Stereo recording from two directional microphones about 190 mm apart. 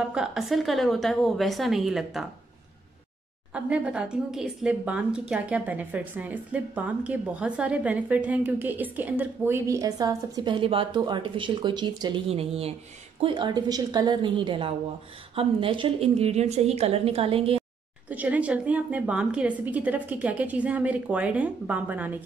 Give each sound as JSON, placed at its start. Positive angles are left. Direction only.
{"t": 0.1, "sound": "a woman's voice", "side_deg": -5}
{"t": 3.5, "sound": "a woman's voice", "side_deg": -5}
{"t": 18.1, "sound": "a woman's voice", "side_deg": -10}